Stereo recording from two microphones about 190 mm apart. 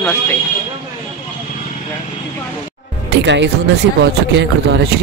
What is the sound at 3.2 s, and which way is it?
A man's voice, 70° right (ahead or behind).